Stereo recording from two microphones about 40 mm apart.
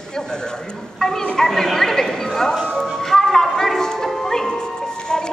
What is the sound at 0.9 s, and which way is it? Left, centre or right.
Speech, centre.